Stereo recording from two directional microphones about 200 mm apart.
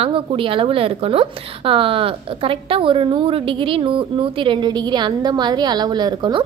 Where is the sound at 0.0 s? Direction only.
25° right (ahead or behind).